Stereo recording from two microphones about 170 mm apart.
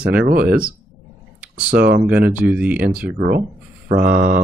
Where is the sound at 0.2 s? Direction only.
60° right (ahead or behind).